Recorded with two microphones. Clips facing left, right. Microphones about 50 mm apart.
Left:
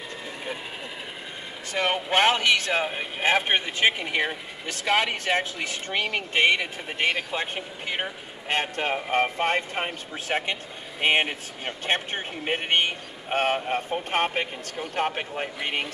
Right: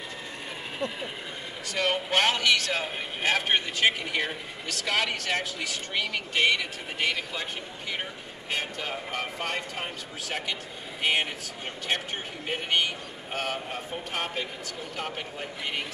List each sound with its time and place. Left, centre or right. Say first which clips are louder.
1.7 s speech: left 2 dB; centre
5.9 s speech: left 3 dB; centre
6.3 s speech: left 3 dB; left